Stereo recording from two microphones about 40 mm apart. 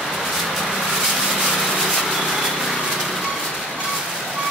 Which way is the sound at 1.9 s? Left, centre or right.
Centre.